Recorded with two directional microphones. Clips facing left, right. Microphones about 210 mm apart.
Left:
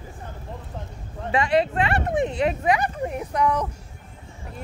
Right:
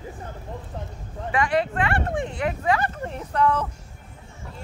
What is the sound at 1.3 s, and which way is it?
Speech, 25° left (ahead or behind).